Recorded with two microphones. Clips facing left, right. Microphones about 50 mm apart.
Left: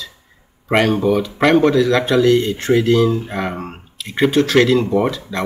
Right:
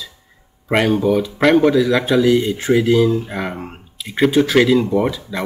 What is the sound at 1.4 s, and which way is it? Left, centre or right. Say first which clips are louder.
A man's voice: even; centre.